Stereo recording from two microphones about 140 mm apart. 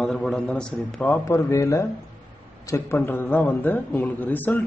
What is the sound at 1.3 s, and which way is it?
A man's voice, 20° left (ahead or behind).